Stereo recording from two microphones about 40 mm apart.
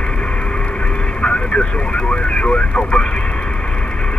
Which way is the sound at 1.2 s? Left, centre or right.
Left.